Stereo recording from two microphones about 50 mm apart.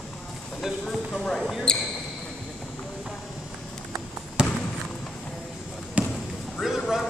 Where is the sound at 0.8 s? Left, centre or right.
Centre.